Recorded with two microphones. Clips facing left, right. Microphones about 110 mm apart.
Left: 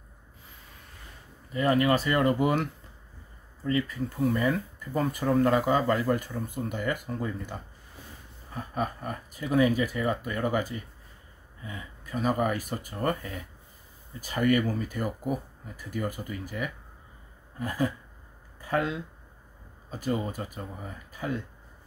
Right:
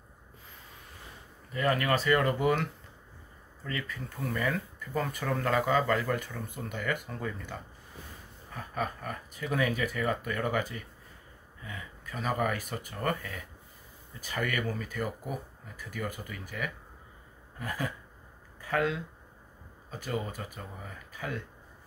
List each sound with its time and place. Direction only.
1.5 s speech: 20° left (ahead or behind)
3.6 s speech: 25° left (ahead or behind)
8.5 s speech: 25° left (ahead or behind)
11.6 s speech: 25° left (ahead or behind)
15.0 s speech: 20° left (ahead or behind)
15.9 s speech: 30° left (ahead or behind)